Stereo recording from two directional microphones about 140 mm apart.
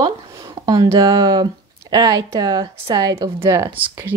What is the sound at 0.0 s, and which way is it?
Speech, 25° right (ahead or behind).